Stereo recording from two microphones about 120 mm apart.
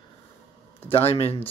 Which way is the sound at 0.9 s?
55° left (ahead or behind).